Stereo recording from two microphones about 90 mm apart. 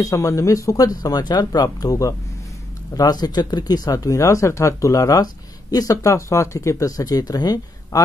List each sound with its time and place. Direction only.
0.0 s speech: 35° left (ahead or behind)